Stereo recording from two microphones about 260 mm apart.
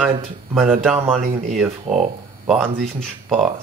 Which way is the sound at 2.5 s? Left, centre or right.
Centre.